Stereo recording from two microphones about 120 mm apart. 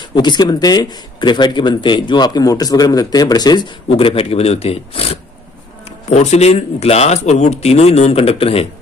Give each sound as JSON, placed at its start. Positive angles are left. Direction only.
{"t": 0.1, "sound": "speech", "side_deg": 35}
{"t": 3.9, "sound": "speech", "side_deg": 50}
{"t": 6.0, "sound": "speech", "side_deg": 70}